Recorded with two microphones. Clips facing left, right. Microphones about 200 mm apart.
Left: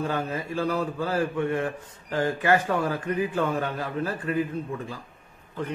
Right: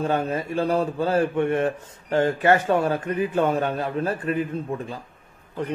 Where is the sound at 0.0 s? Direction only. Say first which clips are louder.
Right 4 dB; 25° right (ahead or behind).